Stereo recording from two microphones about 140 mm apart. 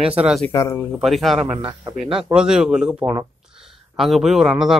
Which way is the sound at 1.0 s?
Centre (ahead or behind).